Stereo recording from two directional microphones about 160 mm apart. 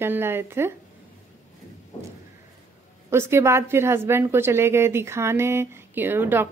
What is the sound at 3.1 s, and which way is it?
A woman's voice, 15° right (ahead or behind).